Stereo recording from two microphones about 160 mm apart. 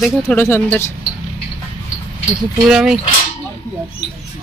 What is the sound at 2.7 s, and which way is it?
Speech, 5° right (ahead or behind).